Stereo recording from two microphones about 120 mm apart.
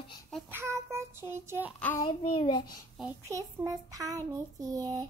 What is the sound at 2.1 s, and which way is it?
Child singing, 45° left (ahead or behind).